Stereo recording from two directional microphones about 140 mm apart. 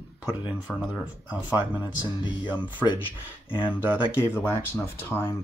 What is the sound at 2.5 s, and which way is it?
Speech, 35° left (ahead or behind).